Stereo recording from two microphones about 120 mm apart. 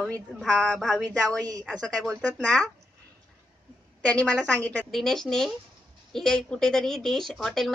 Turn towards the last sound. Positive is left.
turn(degrees=5)  # may be behind; listen again after turning